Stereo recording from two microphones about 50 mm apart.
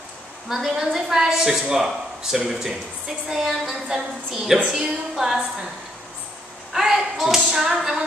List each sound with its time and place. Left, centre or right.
0.5 s a woman's voice: centre
6.7 s clapping: centre